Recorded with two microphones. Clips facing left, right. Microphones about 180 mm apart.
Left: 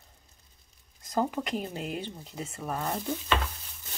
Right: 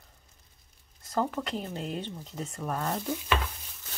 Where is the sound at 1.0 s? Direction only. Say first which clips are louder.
Left 1 dB; 15° left (ahead or behind).